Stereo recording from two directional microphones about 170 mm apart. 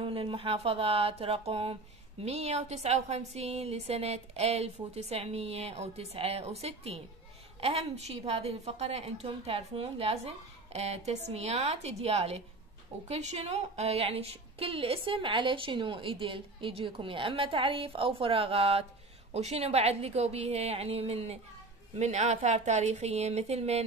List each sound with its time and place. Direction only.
0.0 s a woman's voice: 30° right (ahead or behind)